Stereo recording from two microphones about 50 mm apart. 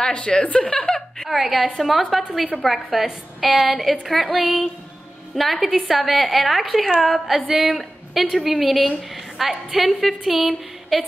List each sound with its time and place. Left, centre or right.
0.0 s a woman's voice: centre
0.8 s a sound: centre
1.3 s a woman's voice: centre
7.4 s speech: centre
7.7 s a sound: centre
8.4 s a woman's voice: centre